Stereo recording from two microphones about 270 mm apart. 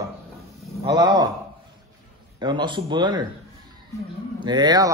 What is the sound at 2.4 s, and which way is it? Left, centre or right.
Speech, centre.